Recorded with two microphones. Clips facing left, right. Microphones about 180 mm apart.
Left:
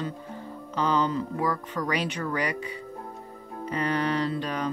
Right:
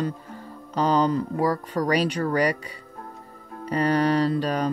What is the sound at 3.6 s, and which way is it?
Music, 40° right (ahead or behind).